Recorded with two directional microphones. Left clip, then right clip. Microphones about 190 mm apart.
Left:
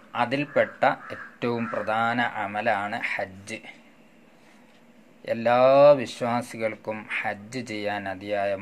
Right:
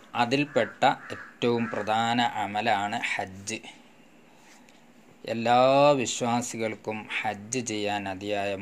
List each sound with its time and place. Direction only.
0.1 s speech: 35° right (ahead or behind)
5.2 s speech: 25° right (ahead or behind)